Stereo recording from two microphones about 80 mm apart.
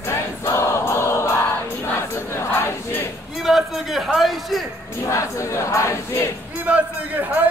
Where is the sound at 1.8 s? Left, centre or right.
Left.